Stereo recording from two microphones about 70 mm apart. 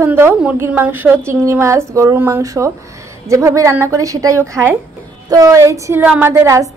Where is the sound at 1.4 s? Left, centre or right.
Right.